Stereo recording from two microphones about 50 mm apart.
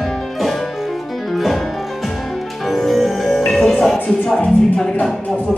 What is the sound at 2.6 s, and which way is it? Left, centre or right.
Music, centre.